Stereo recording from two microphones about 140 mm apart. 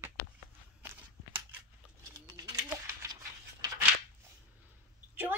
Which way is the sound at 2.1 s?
25° right (ahead or behind).